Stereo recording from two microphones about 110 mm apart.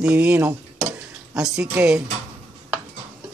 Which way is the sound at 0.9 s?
5° right (ahead or behind).